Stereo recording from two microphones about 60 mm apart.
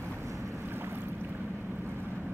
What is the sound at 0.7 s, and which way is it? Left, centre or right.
Boat, right.